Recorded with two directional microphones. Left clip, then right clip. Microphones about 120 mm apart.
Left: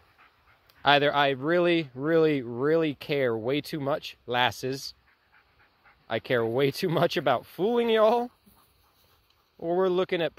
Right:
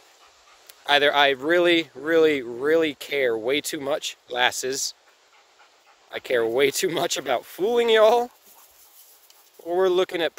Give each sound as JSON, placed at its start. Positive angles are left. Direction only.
{"t": 0.7, "sound": "speech", "side_deg": -20}
{"t": 6.1, "sound": "speech", "side_deg": -20}
{"t": 9.7, "sound": "speech", "side_deg": -25}